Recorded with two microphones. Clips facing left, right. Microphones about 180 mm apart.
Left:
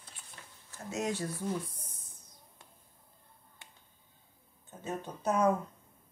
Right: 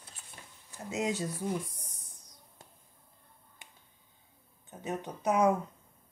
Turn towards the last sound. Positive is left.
turn(degrees=-15)  # may be behind; listen again after turning